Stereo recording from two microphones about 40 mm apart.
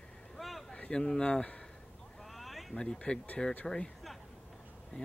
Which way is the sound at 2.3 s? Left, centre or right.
Centre.